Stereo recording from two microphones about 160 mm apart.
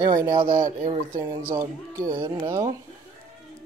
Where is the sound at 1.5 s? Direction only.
15° right (ahead or behind).